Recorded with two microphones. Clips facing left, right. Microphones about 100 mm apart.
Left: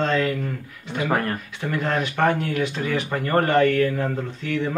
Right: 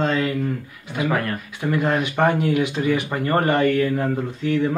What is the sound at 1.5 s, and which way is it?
A man's voice, 10° right (ahead or behind).